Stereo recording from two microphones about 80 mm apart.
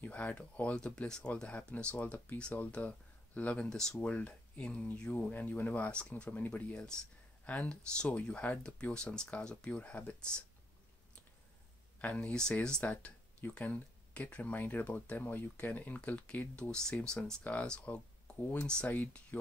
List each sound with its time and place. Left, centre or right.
0.0 s speech: centre
12.0 s speech: centre